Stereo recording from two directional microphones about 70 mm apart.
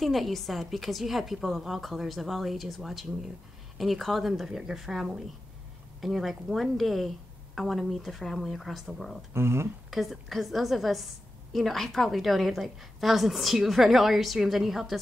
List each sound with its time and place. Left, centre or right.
0.0 s a woman's voice: centre
9.3 s speech: right
9.8 s a woman's voice: centre